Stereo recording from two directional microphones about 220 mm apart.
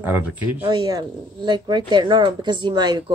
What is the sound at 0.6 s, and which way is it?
Speech, 20° right (ahead or behind).